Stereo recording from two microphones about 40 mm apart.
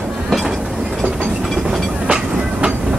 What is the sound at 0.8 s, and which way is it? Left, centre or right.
Train, centre.